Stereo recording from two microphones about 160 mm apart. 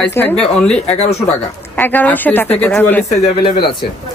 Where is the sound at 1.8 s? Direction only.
10° left (ahead or behind).